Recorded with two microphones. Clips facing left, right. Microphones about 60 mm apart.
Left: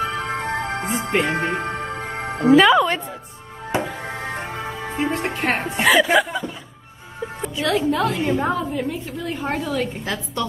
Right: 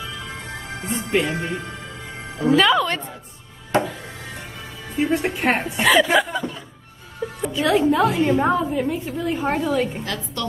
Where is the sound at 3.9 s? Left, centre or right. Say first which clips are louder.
Left 7 dB; left.